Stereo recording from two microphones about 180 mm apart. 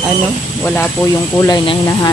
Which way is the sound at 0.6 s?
10° left (ahead or behind).